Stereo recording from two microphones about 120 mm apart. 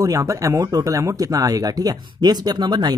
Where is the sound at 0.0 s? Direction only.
25° right (ahead or behind).